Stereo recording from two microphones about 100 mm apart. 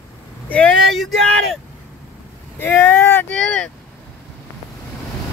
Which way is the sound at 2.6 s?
20° left (ahead or behind).